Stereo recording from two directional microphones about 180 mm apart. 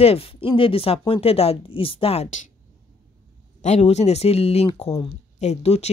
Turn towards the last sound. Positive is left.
turn(degrees=35)  # may be behind; listen again after turning